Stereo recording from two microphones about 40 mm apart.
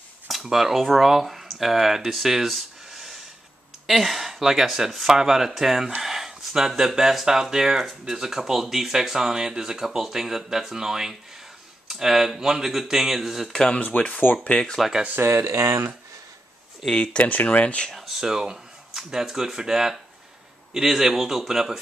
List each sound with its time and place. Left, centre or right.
0.3 s speech: centre
2.5 s a sound: centre
3.8 s speech: centre
13.5 s speech: centre
13.7 s speech: left
15.1 s speech: right
16.9 s speech: left
17.2 s speech: left
17.9 s speech: centre
18.2 s speech: centre